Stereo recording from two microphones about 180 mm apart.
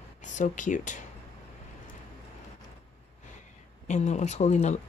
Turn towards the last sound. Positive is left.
turn(degrees=40)  # may be behind; listen again after turning